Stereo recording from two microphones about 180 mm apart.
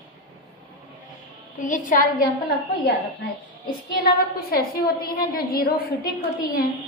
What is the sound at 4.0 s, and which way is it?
A woman's voice, 60° left (ahead or behind).